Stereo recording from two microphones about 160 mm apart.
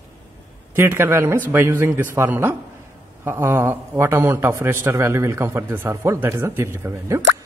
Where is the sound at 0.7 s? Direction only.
15° right (ahead or behind).